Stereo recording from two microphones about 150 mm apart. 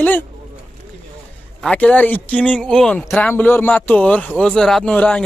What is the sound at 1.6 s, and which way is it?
Speech, 5° left (ahead or behind).